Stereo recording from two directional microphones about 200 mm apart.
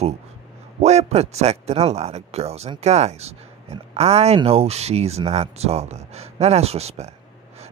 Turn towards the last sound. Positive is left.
turn(degrees=-35)  # may be behind; listen again after turning